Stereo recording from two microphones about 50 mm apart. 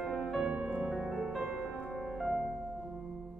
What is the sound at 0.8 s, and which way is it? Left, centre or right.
Music, centre.